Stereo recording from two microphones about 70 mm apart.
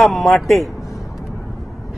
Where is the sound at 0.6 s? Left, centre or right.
Left.